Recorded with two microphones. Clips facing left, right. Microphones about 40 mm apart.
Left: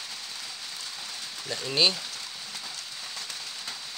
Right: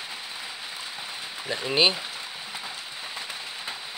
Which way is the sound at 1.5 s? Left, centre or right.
Right.